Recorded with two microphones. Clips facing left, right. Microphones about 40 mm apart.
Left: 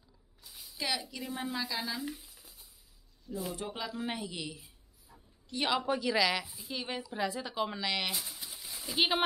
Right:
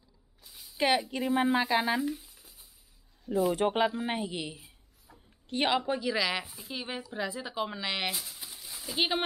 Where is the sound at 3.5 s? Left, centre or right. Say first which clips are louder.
Right 12 dB; right.